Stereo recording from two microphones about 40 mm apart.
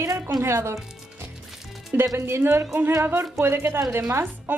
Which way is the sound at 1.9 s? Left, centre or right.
Right.